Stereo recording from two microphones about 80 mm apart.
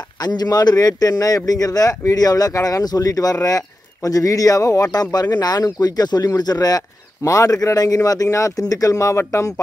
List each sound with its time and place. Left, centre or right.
0.2 s a man's voice: left
5.1 s a man's voice: left